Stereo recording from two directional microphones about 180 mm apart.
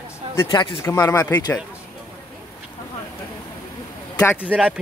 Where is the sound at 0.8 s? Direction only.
15° left (ahead or behind).